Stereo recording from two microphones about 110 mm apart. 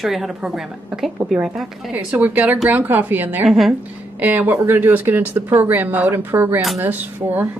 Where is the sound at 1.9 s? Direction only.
15° right (ahead or behind).